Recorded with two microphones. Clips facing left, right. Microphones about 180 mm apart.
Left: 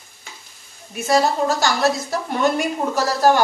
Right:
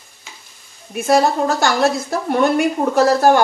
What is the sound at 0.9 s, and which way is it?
A woman's voice, 55° right (ahead or behind).